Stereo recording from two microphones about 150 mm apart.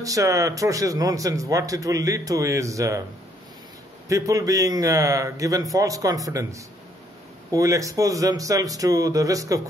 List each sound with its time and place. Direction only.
0.0 s speech: 20° right (ahead or behind)
4.1 s speech: 20° right (ahead or behind)